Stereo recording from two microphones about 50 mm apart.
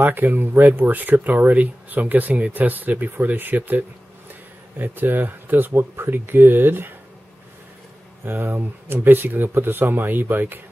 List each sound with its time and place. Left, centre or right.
0.0 s speech: right
8.3 s speech: right